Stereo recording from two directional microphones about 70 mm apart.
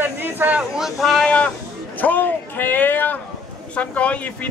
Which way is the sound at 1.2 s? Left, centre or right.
Centre.